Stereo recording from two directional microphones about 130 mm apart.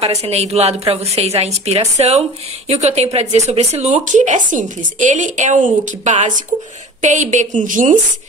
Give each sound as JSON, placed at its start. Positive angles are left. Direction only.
{"t": 0.0, "sound": "a woman's voice", "side_deg": -55}